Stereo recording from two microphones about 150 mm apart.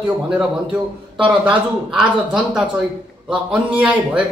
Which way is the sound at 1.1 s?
10° right (ahead or behind).